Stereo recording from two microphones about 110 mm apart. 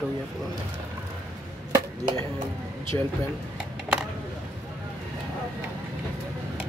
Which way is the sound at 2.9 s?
25° left (ahead or behind).